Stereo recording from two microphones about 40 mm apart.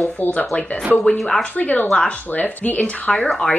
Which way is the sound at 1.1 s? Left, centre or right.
Centre.